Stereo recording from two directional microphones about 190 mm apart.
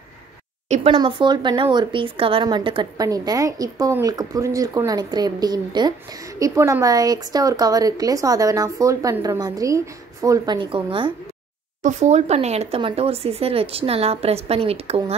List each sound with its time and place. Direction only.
0.7 s speech: 30° right (ahead or behind)
11.8 s speech: 40° right (ahead or behind)